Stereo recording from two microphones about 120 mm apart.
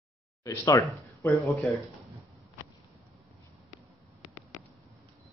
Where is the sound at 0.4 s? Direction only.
25° left (ahead or behind).